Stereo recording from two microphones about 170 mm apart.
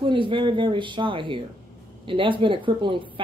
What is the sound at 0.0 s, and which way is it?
Speech, 30° right (ahead or behind).